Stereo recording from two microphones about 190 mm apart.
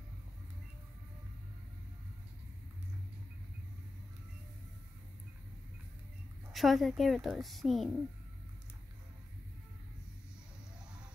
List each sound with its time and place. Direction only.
6.5 s a woman's voice: centre (ahead or behind)